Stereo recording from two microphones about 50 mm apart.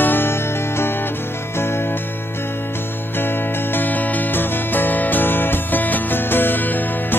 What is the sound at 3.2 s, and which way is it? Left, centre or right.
Music, left.